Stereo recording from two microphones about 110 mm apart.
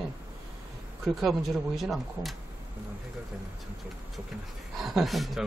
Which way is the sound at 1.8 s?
Centre (ahead or behind).